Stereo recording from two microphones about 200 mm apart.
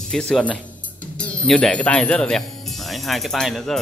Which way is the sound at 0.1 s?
5° left (ahead or behind).